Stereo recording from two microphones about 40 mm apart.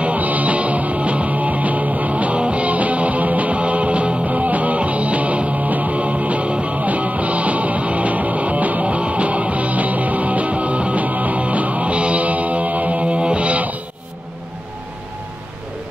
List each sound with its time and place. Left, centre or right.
0.0 s music: right